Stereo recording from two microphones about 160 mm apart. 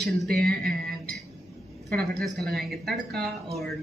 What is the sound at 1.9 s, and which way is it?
Speech, 5° left (ahead or behind).